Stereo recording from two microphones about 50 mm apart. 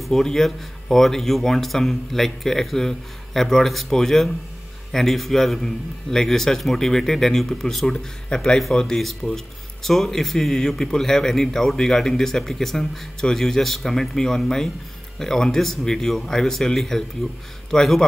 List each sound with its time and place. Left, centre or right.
0.0 s a man's voice: centre